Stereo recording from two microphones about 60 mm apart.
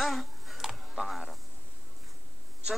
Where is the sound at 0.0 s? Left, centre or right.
Centre.